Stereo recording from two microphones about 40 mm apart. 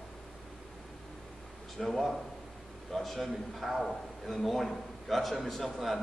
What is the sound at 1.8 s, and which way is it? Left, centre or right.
A man's voice, centre.